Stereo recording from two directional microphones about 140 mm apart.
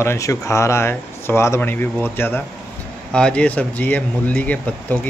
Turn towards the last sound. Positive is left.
turn(degrees=10)  # may be behind; listen again after turning